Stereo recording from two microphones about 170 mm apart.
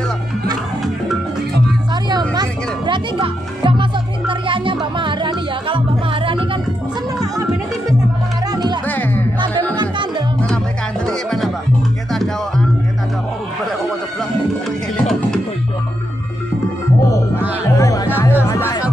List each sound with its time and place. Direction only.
2.0 s music: 25° right (ahead or behind)
8.5 s music: 25° right (ahead or behind)
8.8 s music: 10° left (ahead or behind)
9.8 s music: 25° right (ahead or behind)
11.1 s music: centre (ahead or behind)
15.0 s music: 5° left (ahead or behind)
17.6 s music: 20° left (ahead or behind)